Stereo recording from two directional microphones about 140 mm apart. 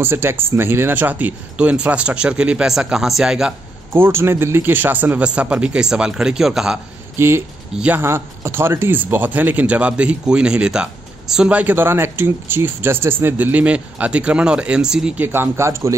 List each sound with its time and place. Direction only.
0.0 s speech: 15° right (ahead or behind)
3.9 s speech: 15° right (ahead or behind)
7.2 s speech: 20° right (ahead or behind)